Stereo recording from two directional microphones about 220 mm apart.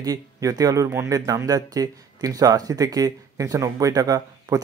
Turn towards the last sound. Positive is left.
turn(degrees=-15)  # may be behind; listen again after turning